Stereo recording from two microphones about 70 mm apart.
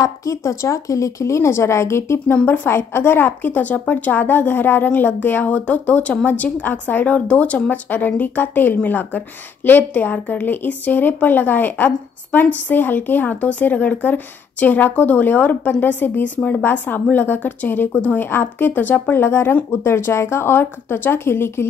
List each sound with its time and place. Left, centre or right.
0.0 s speech: left
2.2 s speech: left